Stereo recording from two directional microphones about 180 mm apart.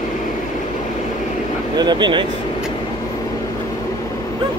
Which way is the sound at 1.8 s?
25° right (ahead or behind).